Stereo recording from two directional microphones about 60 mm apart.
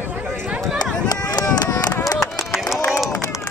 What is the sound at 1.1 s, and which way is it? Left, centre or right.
Run, left.